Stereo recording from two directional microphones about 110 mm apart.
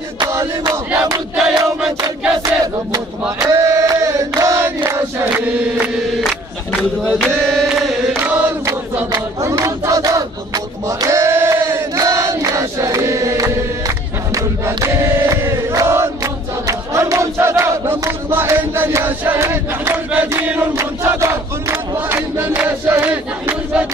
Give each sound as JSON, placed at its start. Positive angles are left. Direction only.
{"t": 0.3, "sound": "battle cry", "side_deg": -25}
{"t": 1.3, "sound": "battle cry", "side_deg": -10}
{"t": 2.3, "sound": "battle cry", "side_deg": -35}
{"t": 4.4, "sound": "choir", "side_deg": -25}
{"t": 4.9, "sound": "a sound", "side_deg": -20}
{"t": 7.2, "sound": "chant", "side_deg": 5}
{"t": 8.2, "sound": "choir", "side_deg": -20}
{"t": 16.6, "sound": "battle cry", "side_deg": -30}